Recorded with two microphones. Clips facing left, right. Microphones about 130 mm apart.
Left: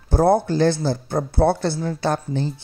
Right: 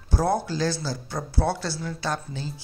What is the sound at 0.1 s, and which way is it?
Speech, 55° left (ahead or behind).